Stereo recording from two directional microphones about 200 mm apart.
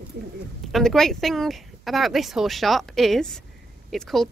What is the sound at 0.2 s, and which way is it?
Speech, 55° right (ahead or behind).